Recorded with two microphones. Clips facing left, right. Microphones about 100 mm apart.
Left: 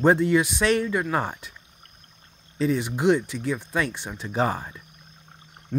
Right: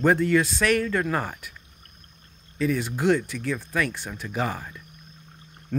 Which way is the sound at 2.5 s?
25° left (ahead or behind).